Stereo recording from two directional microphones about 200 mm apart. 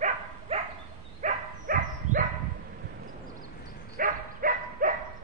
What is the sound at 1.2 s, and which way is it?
Dog, 45° right (ahead or behind).